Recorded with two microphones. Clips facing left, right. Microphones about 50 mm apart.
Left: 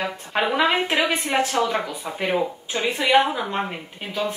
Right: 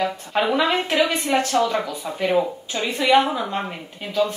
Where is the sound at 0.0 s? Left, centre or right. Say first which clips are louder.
Right 2 dB; left.